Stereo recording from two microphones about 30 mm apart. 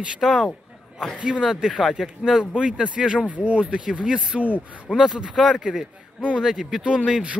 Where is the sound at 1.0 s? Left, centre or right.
Centre.